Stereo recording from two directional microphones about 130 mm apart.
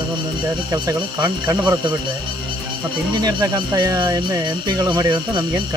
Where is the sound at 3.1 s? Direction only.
30° right (ahead or behind).